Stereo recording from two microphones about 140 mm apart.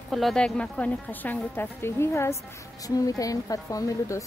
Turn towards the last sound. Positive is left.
turn(degrees=25)  # may be behind; listen again after turning